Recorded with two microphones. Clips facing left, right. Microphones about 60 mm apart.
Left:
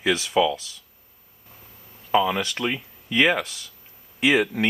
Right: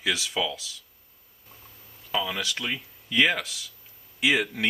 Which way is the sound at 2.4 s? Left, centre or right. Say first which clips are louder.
Left 5 dB; left.